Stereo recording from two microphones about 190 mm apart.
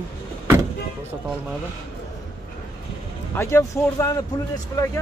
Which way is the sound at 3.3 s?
15° left (ahead or behind).